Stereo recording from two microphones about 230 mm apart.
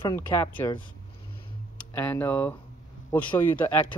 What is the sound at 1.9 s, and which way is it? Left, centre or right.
Speech, centre.